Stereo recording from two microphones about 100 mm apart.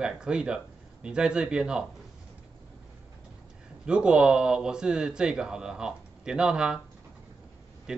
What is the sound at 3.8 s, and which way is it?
Speech, 10° right (ahead or behind).